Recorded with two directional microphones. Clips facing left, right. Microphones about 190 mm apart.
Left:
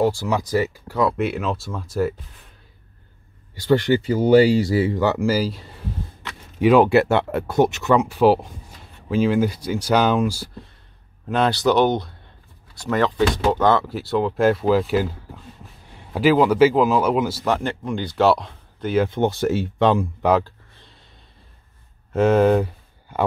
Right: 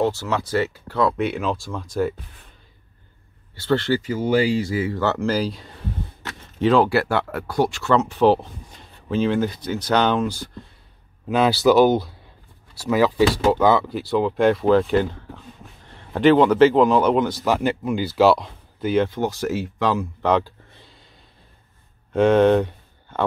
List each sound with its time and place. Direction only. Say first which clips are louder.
0.0 s speech: left 2 dB; 10° left (ahead or behind)
3.5 s speech: left 3 dB; 15° left (ahead or behind)
4.0 s speech: left 6 dB; 35° left (ahead or behind)
4.9 s speech: left 2 dB; 15° left (ahead or behind)
6.6 s speech: left 3 dB; 15° left (ahead or behind)
11.2 s speech: right 2 dB; 5° right (ahead or behind)
19.0 s speech: left 4 dB; 25° left (ahead or behind)
20.2 s speech: left 1 dB; 5° left (ahead or behind)
22.1 s speech: right 1 dB; 5° left (ahead or behind)